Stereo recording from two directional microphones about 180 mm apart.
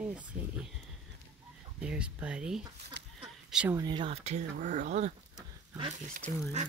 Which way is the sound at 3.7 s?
25° right (ahead or behind).